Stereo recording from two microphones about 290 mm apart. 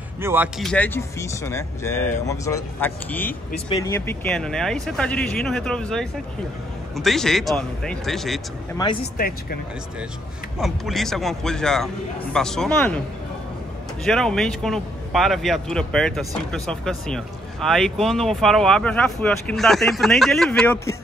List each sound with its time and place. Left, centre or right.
0.2 s speech: centre
9.0 s speech: left
10.6 s speech: centre
14.0 s speech: centre